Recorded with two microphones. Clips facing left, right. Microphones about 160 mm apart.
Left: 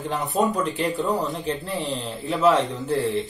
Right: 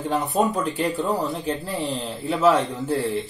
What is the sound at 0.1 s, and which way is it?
Speech, centre (ahead or behind).